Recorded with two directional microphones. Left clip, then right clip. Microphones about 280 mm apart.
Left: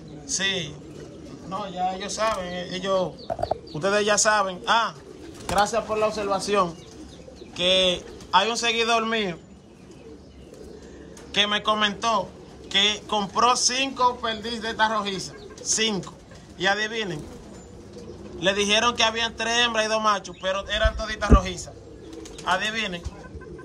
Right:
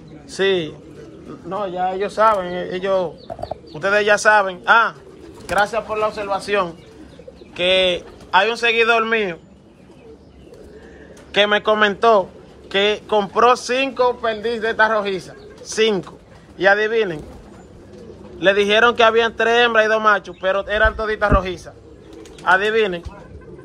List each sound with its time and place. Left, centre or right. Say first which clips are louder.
0.3 s a man's voice: right 7 dB; centre
11.3 s a man's voice: right 7 dB; centre
18.4 s a man's voice: right 7 dB; centre